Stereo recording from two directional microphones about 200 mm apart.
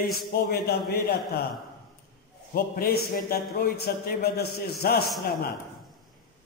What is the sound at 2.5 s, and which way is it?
A man's voice, 50° left (ahead or behind).